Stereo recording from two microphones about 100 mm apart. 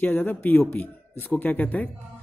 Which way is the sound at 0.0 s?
20° left (ahead or behind).